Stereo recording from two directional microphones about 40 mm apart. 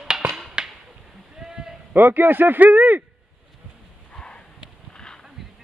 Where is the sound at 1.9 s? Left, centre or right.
Right.